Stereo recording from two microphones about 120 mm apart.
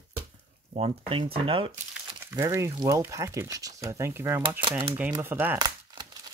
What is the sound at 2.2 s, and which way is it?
Speech, 25° right (ahead or behind).